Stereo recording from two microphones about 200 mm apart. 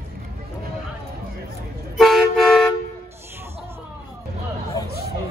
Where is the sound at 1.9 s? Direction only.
Centre (ahead or behind).